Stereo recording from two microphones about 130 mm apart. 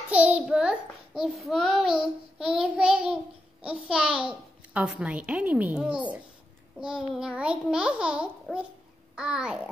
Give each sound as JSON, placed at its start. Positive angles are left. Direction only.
{"t": 0.1, "sound": "a child's voice", "side_deg": -10}